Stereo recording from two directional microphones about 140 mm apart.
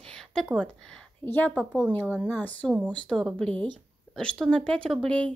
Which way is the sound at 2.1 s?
10° right (ahead or behind).